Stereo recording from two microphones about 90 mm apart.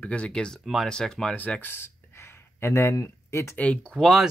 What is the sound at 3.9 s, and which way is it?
Speech, centre (ahead or behind).